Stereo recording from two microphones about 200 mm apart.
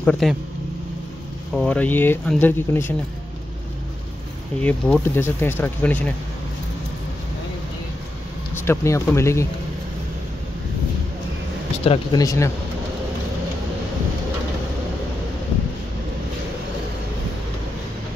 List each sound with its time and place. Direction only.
0.0 s speech: 5° left (ahead or behind)
1.5 s speech: 5° left (ahead or behind)
4.6 s speech: 5° left (ahead or behind)
8.6 s speech: 15° left (ahead or behind)
11.8 s speech: 30° left (ahead or behind)
12.2 s speech: 15° left (ahead or behind)